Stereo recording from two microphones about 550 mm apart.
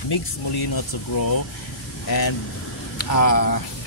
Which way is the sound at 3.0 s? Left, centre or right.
Left.